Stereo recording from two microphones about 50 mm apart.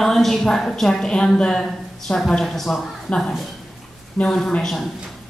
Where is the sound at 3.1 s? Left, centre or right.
Left.